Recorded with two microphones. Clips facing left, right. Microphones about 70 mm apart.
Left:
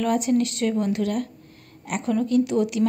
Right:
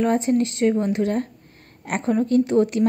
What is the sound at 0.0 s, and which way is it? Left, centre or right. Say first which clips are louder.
A woman's voice: right 2 dB; right.